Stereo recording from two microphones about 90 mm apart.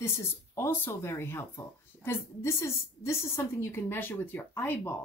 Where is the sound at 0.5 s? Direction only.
30° left (ahead or behind).